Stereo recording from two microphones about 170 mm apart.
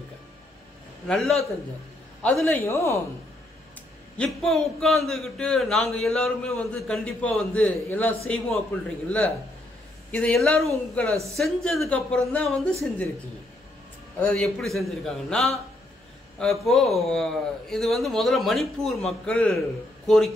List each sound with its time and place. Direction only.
1.0 s a man's voice: centre (ahead or behind)
2.6 s speech: 15° left (ahead or behind)
4.2 s a man's voice: centre (ahead or behind)
14.2 s a man's voice: 5° left (ahead or behind)